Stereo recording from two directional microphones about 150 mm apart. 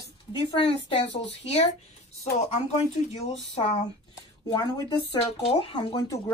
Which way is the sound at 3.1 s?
45° left (ahead or behind).